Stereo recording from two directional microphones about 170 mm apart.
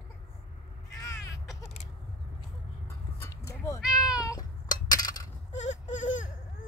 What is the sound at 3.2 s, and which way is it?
Dog, 15° left (ahead or behind).